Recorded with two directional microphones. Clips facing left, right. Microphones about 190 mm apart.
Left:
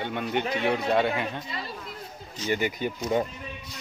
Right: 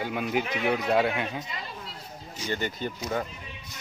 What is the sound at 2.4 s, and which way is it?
Speech, 10° left (ahead or behind).